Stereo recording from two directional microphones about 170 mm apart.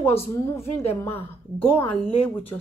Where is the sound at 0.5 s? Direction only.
15° left (ahead or behind).